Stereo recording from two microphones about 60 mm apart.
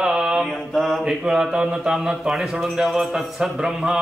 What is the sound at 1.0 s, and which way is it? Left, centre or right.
A man's voice, centre.